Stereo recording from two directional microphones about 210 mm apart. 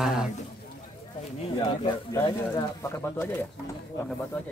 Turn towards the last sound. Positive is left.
turn(degrees=10)  # may be behind; listen again after turning